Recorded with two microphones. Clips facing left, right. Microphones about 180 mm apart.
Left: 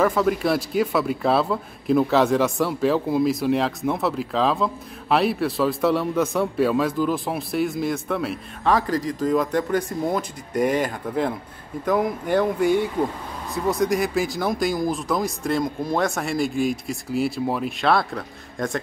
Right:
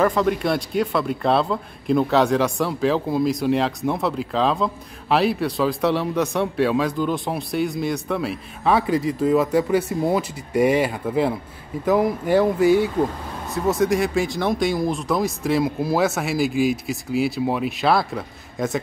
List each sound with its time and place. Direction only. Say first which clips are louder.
0.0 s speech: right 1 dB; centre (ahead or behind)